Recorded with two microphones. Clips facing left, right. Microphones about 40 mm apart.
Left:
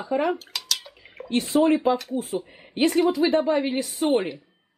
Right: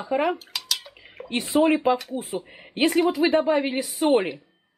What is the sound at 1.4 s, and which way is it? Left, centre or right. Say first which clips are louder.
A woman's voice: right 1 dB; centre.